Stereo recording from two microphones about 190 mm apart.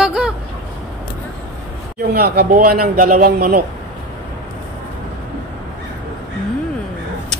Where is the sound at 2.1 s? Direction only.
55° right (ahead or behind).